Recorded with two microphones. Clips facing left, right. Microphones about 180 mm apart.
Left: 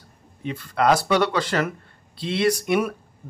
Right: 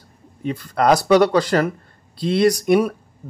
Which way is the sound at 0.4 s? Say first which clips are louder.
Right 3 dB; 40° right (ahead or behind).